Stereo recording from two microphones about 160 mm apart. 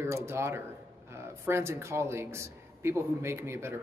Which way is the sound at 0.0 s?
15° right (ahead or behind).